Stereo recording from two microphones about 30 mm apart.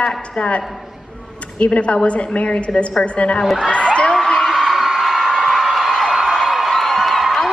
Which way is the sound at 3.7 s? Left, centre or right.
Left.